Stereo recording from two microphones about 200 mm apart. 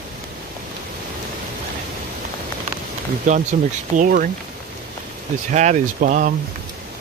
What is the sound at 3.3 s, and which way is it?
Speech, 40° right (ahead or behind).